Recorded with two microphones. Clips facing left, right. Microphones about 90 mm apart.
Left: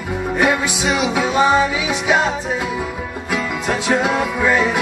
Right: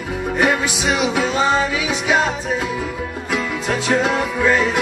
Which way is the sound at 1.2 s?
15° left (ahead or behind).